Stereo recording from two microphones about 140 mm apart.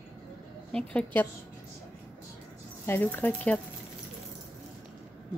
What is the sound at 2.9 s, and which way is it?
Speech, 15° left (ahead or behind).